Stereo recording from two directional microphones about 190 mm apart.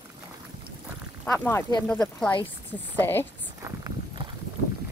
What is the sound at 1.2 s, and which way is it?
A woman's voice, 10° left (ahead or behind).